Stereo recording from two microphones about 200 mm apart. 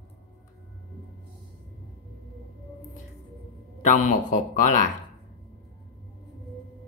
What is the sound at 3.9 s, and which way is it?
Speech, 40° left (ahead or behind).